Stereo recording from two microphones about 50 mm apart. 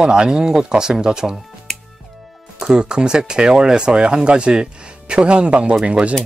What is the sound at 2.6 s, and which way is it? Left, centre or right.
Speech, centre.